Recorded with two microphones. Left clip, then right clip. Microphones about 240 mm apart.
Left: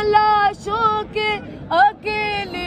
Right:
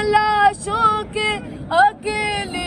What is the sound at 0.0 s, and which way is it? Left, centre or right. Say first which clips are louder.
Vehicle: even; right.